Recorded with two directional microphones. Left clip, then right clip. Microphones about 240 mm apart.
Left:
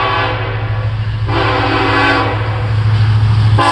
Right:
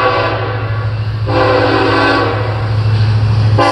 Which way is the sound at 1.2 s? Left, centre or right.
Centre.